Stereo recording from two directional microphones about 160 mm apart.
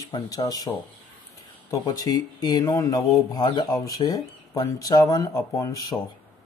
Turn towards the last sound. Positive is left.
turn(degrees=20)  # may be behind; listen again after turning